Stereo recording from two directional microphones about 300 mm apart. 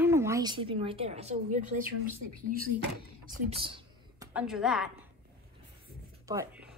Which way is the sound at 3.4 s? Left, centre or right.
Centre.